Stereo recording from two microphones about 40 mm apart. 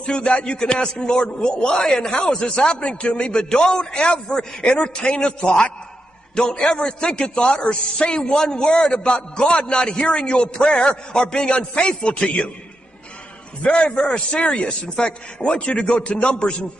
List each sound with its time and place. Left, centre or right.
0.0 s a man's voice: left
13.6 s a man's voice: left